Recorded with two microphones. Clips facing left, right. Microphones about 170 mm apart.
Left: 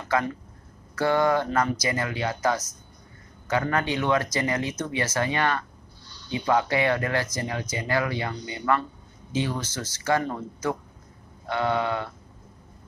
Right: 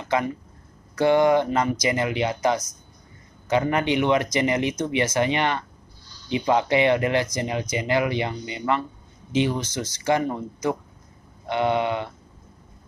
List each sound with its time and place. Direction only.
0.0 s speech: 20° right (ahead or behind)